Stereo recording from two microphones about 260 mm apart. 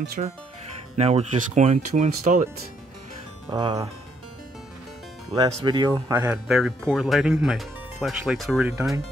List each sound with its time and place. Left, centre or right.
0.2 s speech: right
3.4 s speech: centre
5.3 s speech: centre